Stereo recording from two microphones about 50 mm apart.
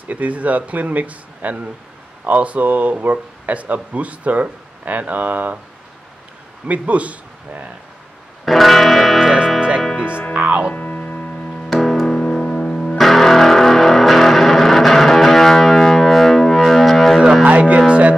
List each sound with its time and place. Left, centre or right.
0.1 s speech: right
6.7 s a man's voice: right
8.5 s music: centre
10.3 s music: right
10.7 s music: left
11.7 s music: centre
12.2 s music: centre
12.9 s music: centre
17.5 s music: right